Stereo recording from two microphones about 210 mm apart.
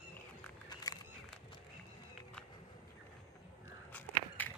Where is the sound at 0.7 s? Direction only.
20° left (ahead or behind).